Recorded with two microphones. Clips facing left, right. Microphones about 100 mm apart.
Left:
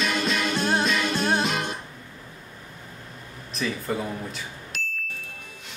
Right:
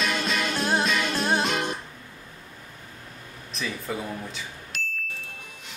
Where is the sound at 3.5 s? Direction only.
Centre (ahead or behind).